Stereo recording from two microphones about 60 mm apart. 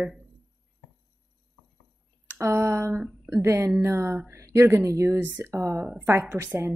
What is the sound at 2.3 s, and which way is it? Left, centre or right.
Speech, right.